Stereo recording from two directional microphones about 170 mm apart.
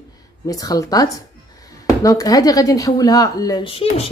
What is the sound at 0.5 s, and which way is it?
Speech, 20° left (ahead or behind).